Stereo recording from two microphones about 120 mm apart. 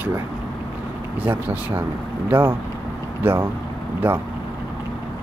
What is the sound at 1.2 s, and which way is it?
Speech, 15° right (ahead or behind).